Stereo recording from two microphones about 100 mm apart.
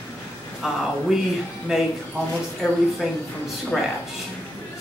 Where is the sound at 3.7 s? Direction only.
Centre (ahead or behind).